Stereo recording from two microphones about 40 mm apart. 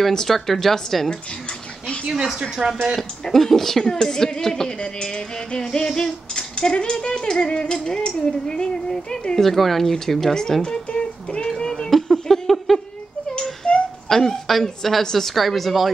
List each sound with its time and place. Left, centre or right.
0.1 s a woman's voice: centre
2.6 s speech: right
3.0 s a woman's voice: centre
5.9 s a sound: centre
9.3 s a woman's voice: centre
10.9 s a sound: left
11.4 s a sound: centre
11.9 s music: centre
13.6 s whimper: left
14.0 s a woman's voice: centre